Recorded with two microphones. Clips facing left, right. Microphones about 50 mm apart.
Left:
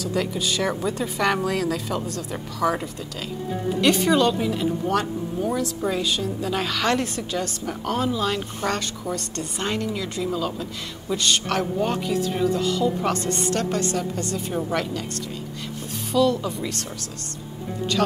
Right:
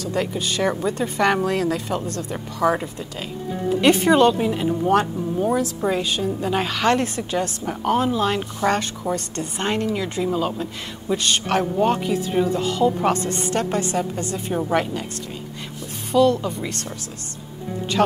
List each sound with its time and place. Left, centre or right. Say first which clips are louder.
0.0 s a woman's voice: right 1 dB; centre
11.1 s a woman's voice: right 2 dB; centre
16.1 s a woman's voice: right 3 dB; centre
18.0 s a woman's voice: right 4 dB; right